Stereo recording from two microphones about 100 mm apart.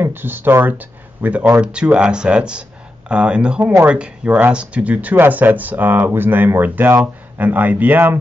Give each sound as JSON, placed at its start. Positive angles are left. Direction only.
{"t": 0.0, "sound": "speech", "side_deg": -20}